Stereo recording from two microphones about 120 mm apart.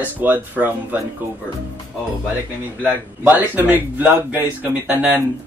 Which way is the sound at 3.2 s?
15° right (ahead or behind).